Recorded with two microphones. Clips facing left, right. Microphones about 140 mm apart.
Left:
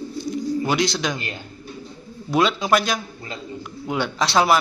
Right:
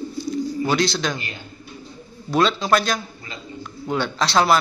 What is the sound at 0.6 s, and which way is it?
Speech, 15° left (ahead or behind).